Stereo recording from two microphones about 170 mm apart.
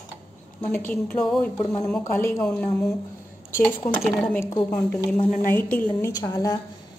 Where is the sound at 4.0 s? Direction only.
5° left (ahead or behind).